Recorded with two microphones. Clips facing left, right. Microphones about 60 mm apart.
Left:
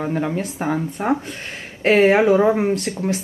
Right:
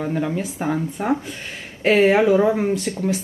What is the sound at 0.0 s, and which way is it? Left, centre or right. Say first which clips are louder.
Speech: left 1 dB; centre.